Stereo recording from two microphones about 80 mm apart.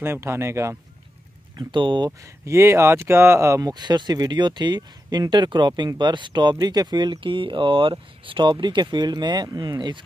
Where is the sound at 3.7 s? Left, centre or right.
Right.